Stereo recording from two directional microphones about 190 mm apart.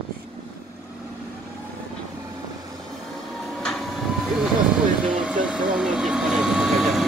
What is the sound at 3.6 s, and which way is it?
Vehicle, centre (ahead or behind).